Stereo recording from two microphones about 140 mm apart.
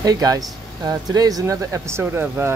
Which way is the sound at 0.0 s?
25° right (ahead or behind).